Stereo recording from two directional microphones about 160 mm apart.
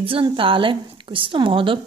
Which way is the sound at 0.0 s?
35° right (ahead or behind).